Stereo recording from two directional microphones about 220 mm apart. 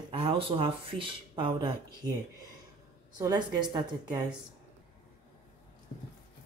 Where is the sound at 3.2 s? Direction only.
20° right (ahead or behind).